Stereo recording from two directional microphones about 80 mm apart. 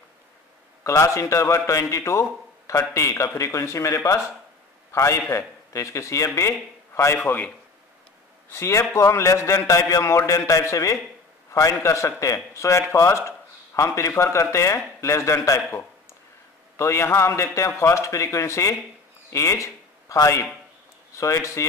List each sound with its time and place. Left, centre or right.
0.8 s a man's voice: left
8.5 s a man's voice: left
16.7 s a man's voice: left